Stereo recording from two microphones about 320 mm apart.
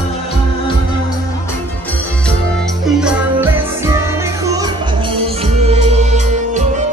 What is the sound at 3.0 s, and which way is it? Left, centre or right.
Music, centre.